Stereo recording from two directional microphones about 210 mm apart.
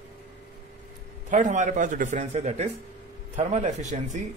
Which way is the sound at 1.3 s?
35° right (ahead or behind).